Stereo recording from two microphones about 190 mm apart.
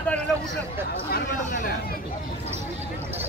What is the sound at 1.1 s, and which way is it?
Speech, 45° left (ahead or behind).